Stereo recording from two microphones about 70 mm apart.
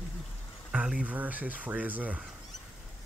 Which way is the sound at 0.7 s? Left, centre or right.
Centre.